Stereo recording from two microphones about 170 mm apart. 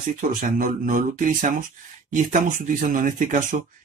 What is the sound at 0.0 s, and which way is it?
Speech, 55° right (ahead or behind).